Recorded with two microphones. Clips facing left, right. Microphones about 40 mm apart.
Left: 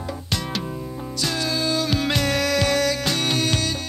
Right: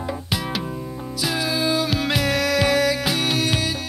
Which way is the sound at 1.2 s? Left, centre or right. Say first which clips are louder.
Right 2 dB; centre.